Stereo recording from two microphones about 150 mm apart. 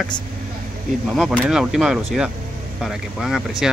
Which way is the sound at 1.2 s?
5° right (ahead or behind).